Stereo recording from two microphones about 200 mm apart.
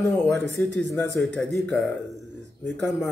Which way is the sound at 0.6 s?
10° left (ahead or behind).